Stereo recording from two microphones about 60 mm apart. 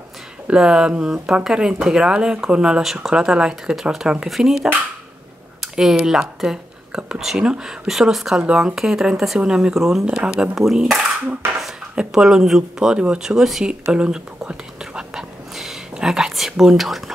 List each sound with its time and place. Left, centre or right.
0.5 s speech: centre
8.4 s speech: centre
13.9 s whispering: centre